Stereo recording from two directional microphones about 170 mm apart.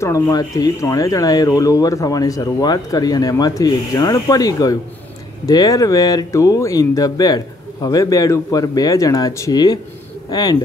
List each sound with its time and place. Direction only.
0.0 s speech: 20° left (ahead or behind)